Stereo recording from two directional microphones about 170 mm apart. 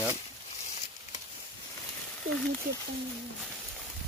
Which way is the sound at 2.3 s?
55° right (ahead or behind).